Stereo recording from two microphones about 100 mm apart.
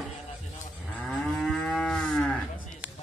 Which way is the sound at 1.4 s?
5° left (ahead or behind).